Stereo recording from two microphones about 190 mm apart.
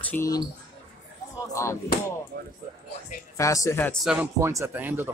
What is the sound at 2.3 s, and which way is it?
Speech, 50° right (ahead or behind).